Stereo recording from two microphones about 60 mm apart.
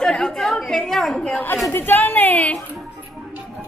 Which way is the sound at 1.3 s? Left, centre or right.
Left.